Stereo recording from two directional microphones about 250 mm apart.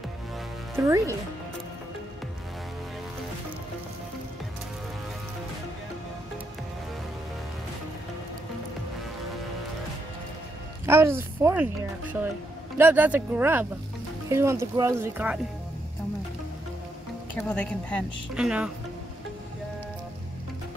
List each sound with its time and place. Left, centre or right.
0.7 s speech: centre
10.9 s speech: centre
17.4 s a woman's voice: centre